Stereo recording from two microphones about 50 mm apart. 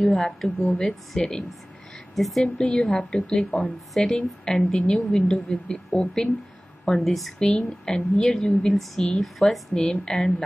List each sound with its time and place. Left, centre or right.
0.0 s a woman's voice: centre
2.1 s speech: centre
2.4 s a woman's voice: centre
7.3 s a woman's voice: centre
9.8 s a woman's voice: centre